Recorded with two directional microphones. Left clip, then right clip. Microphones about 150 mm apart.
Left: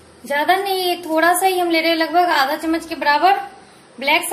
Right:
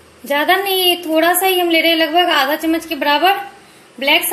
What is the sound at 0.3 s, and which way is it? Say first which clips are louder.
A woman's voice: right 2 dB; 30° right (ahead or behind).